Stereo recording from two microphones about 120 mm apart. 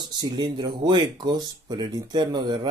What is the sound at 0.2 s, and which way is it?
Speech, 35° right (ahead or behind).